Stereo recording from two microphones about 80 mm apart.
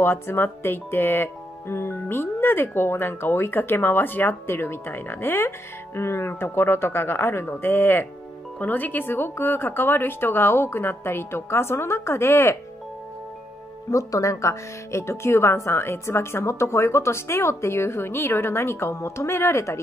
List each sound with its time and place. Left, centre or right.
0.0 s speech: left
13.8 s speech: left